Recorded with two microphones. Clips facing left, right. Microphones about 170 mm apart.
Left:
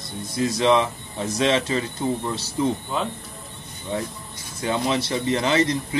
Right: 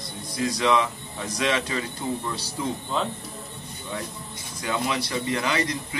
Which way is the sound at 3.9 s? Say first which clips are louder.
Left 6 dB; 25° left (ahead or behind).